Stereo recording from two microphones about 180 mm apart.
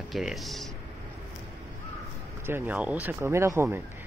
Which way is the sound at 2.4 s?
10° right (ahead or behind).